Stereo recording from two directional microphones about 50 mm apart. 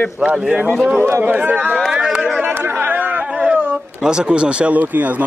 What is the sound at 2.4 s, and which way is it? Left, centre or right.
Chatter, right.